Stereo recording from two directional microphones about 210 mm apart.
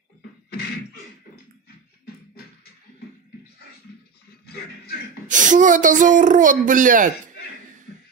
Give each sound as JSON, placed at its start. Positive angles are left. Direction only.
{"t": 0.5, "sound": "beatboxing", "side_deg": 50}
{"t": 4.5, "sound": "speech", "side_deg": 50}
{"t": 5.3, "sound": "speech", "side_deg": -35}